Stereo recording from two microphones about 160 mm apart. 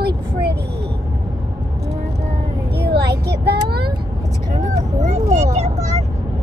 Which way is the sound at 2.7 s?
85° right.